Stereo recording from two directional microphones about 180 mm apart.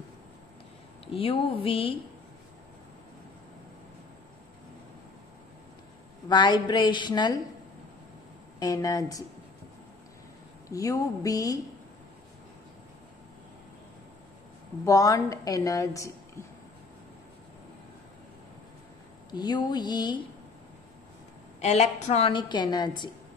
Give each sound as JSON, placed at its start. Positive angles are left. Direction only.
{"t": 1.0, "sound": "speech", "side_deg": 30}
{"t": 6.2, "sound": "a woman's voice", "side_deg": 25}
{"t": 8.5, "sound": "a woman's voice", "side_deg": 20}
{"t": 10.7, "sound": "a woman's voice", "side_deg": 20}
{"t": 14.9, "sound": "a woman's voice", "side_deg": 20}
{"t": 19.3, "sound": "a woman's voice", "side_deg": 25}
{"t": 21.5, "sound": "a woman's voice", "side_deg": 35}